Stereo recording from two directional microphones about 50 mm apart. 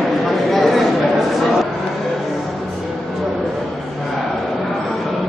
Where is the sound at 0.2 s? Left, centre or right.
Centre.